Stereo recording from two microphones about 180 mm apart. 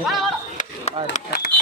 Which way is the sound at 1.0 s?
60° left (ahead or behind).